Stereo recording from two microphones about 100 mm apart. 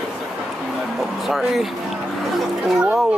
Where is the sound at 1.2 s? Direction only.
Centre (ahead or behind).